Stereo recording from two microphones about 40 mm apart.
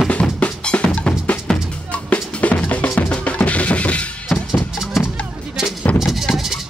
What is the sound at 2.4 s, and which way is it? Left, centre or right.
Drum, left.